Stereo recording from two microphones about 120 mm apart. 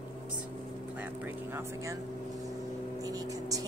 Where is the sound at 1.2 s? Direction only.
20° right (ahead or behind).